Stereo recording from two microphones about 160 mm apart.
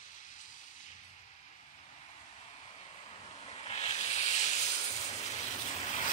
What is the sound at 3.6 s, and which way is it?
Hiss, 45° left (ahead or behind).